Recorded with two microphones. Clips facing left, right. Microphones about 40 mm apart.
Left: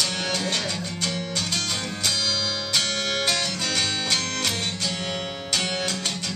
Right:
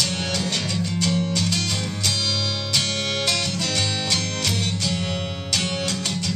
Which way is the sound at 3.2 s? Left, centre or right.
Centre.